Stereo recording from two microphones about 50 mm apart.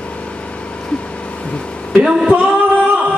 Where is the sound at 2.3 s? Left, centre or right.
Right.